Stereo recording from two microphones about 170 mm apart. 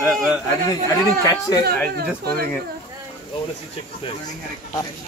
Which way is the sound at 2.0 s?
65° right (ahead or behind).